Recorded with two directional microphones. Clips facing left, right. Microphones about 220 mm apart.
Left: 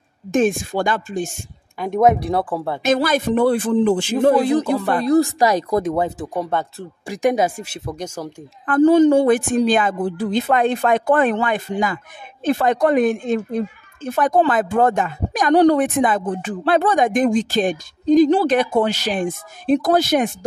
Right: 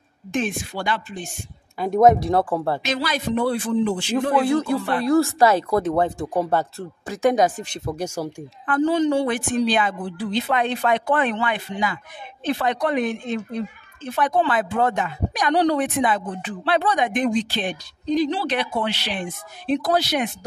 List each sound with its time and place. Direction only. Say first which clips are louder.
0.3 s speech: left 8 dB; 50° left (ahead or behind)
2.0 s speech: even; centre (ahead or behind)
2.8 s speech: left 7 dB; 50° left (ahead or behind)
4.5 s speech: left 3 dB; 20° left (ahead or behind)
6.3 s speech: right 1 dB; 5° right (ahead or behind)
7.1 s speech: left 1 dB; 15° left (ahead or behind)
7.9 s speech: right 2 dB; 10° right (ahead or behind)
8.6 s speech: left 7 dB; 50° left (ahead or behind)